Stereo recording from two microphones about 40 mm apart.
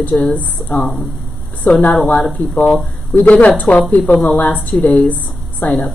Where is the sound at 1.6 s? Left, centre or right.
Left.